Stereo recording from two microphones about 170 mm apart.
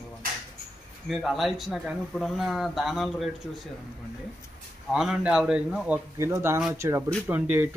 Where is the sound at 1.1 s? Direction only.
Centre (ahead or behind).